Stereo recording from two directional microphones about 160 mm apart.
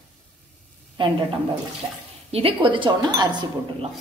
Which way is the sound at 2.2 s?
35° right (ahead or behind).